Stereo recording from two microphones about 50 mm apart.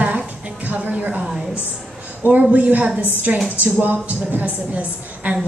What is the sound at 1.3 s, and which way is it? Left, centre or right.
Speech, centre.